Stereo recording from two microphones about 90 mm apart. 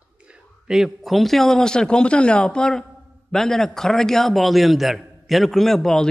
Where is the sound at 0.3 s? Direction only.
5° right (ahead or behind).